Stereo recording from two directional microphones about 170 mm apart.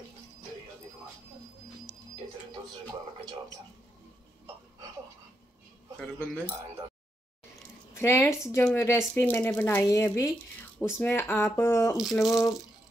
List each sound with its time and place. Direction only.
5.9 s speech: 10° left (ahead or behind)
7.9 s speech: 15° left (ahead or behind)
12.0 s a sound: centre (ahead or behind)